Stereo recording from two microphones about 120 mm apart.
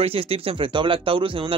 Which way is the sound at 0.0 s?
55° right (ahead or behind).